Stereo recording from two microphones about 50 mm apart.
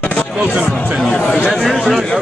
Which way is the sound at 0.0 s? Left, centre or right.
Left.